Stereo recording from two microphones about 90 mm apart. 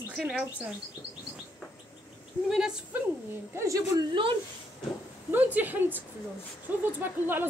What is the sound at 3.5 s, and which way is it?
Speech, 35° right (ahead or behind).